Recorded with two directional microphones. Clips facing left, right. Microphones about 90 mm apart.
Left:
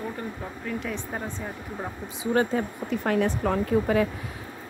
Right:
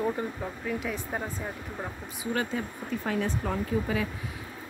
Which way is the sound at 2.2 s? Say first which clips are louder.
Left 7 dB; 35° left (ahead or behind).